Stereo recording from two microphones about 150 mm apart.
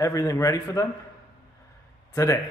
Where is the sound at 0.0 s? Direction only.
25° left (ahead or behind).